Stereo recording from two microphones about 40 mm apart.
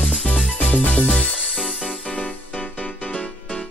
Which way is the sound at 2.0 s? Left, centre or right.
Left.